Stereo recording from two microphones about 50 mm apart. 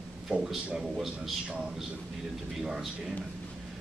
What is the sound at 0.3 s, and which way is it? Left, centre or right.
Speech, right.